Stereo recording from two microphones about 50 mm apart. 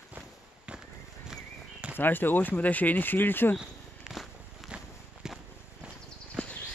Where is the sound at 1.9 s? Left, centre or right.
Left.